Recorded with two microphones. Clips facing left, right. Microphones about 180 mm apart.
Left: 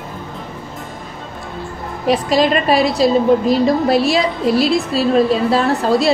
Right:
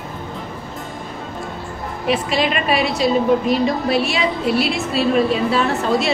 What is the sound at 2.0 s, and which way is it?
A woman's voice, 40° left (ahead or behind).